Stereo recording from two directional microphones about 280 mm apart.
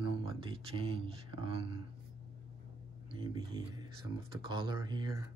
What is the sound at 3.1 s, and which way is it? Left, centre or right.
Speech, centre.